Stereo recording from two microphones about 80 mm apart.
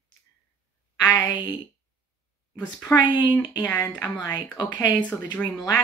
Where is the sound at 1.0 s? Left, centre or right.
Left.